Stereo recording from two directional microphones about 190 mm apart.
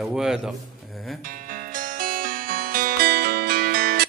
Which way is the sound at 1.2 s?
45° right (ahead or behind).